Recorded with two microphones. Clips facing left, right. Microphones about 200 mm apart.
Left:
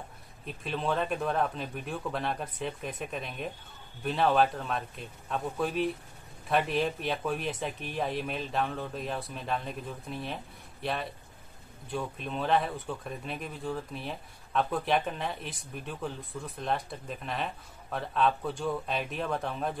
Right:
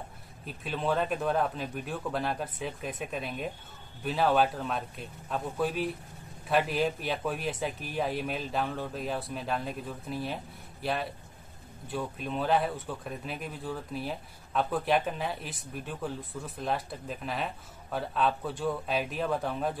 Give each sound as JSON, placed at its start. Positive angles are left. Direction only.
{"t": 0.5, "sound": "speech", "side_deg": 0}